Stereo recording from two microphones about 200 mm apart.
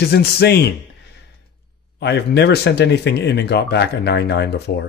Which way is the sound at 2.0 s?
60° left (ahead or behind).